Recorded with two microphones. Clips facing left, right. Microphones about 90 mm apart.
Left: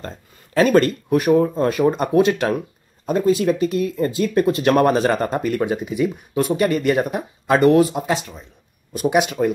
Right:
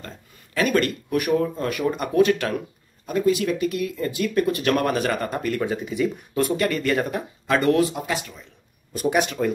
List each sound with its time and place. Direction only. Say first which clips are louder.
0.6 s speech: left 6 dB; 30° left (ahead or behind)
3.1 s speech: left 4 dB; 30° left (ahead or behind)